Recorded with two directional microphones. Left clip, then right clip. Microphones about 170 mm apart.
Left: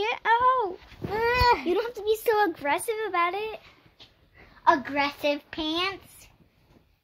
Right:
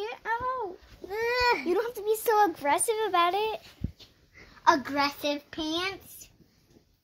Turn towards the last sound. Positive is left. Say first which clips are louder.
# left 3 dB
turn(degrees=0)  # may be behind; listen again after turning